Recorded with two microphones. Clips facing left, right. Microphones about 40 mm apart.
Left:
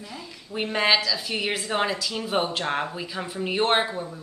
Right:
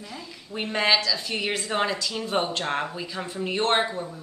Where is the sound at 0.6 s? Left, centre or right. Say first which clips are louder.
Left 1 dB; centre.